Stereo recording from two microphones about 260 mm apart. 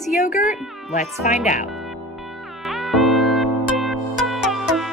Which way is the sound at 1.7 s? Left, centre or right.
Centre.